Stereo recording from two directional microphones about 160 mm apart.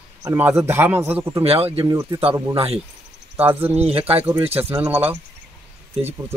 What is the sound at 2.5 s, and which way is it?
Speech, 35° right (ahead or behind).